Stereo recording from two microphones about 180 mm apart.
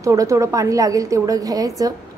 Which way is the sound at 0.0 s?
20° right (ahead or behind).